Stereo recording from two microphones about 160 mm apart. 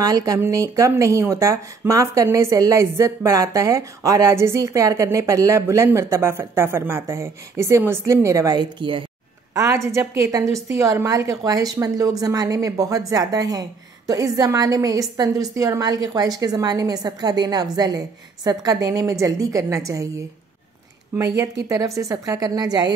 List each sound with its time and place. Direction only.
0.0 s a woman's voice: 20° right (ahead or behind)
21.6 s a woman's voice: 20° right (ahead or behind)